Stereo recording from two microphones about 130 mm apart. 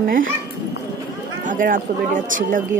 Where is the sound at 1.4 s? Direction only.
90° right.